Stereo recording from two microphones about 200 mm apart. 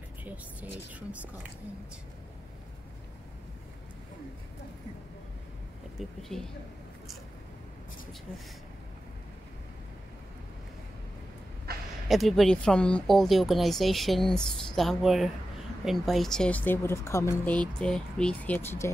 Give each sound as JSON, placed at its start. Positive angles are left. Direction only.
{"t": 0.2, "sound": "speech", "side_deg": -5}
{"t": 5.9, "sound": "speech", "side_deg": 0}
{"t": 11.7, "sound": "a sound", "side_deg": -50}
{"t": 12.1, "sound": "speech", "side_deg": 0}